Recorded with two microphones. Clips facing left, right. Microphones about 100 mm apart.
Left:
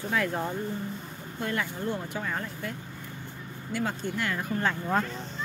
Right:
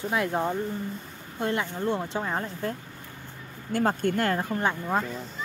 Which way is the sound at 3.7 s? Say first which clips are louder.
Right 6 dB; 45° right (ahead or behind).